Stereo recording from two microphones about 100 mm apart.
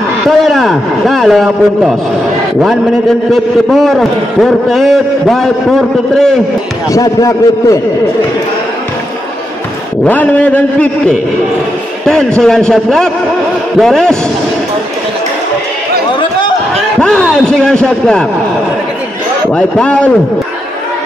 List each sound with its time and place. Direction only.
0.3 s a man's voice: centre (ahead or behind)
3.3 s a man's voice: 5° left (ahead or behind)
6.9 s a man's voice: 35° left (ahead or behind)
10.0 s a man's voice: 15° left (ahead or behind)
17.0 s a man's voice: 10° left (ahead or behind)
19.5 s a man's voice: 10° left (ahead or behind)